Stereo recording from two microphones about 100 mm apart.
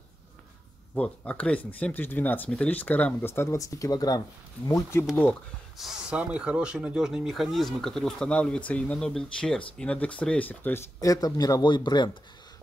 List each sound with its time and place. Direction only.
0.9 s speech: 10° left (ahead or behind); by 4.2 s 40° left (ahead or behind)
4.6 s speech: 25° left (ahead or behind)
5.8 s speech: 5° right (ahead or behind); by 10.9 s 20° left (ahead or behind)
11.0 s speech: 35° left (ahead or behind)